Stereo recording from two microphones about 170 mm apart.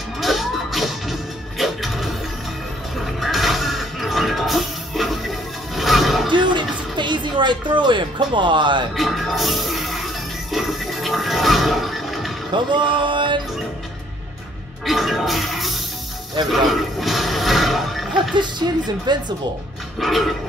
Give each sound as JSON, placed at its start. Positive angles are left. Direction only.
{"t": 0.2, "sound": "music", "side_deg": 0}
{"t": 6.3, "sound": "a sound", "side_deg": -30}
{"t": 8.9, "sound": "music", "side_deg": 0}
{"t": 12.7, "sound": "speech", "side_deg": -30}
{"t": 14.9, "sound": "music", "side_deg": 0}
{"t": 18.3, "sound": "speech", "side_deg": -25}
{"t": 20.0, "sound": "a sound", "side_deg": 0}